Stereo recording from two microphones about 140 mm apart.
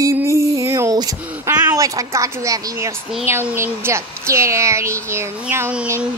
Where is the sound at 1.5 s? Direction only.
25° right (ahead or behind).